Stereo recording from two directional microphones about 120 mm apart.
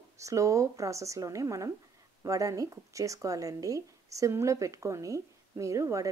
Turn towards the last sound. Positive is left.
turn(degrees=-25)  # may be behind; listen again after turning